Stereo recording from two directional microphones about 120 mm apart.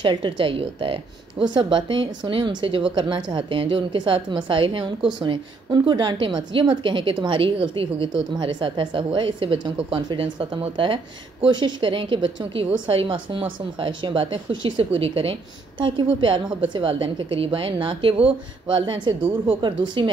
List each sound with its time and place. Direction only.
0.0 s a woman's voice: 40° right (ahead or behind)
10.0 s a woman's voice: 40° right (ahead or behind)